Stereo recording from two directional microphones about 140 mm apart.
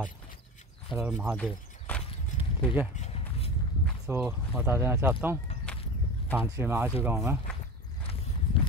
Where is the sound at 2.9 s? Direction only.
50° left (ahead or behind).